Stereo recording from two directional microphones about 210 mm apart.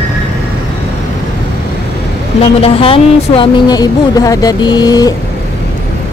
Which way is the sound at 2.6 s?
25° left (ahead or behind).